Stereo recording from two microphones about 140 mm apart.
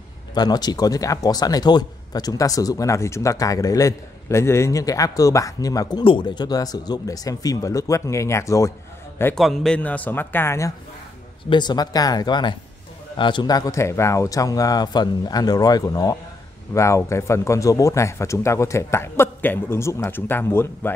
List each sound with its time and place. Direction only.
0.3 s speech: 30° left (ahead or behind)
9.3 s speech: centre (ahead or behind); by 10.7 s 20° left (ahead or behind)
11.4 s speech: 30° left (ahead or behind); by 20.9 s 15° left (ahead or behind)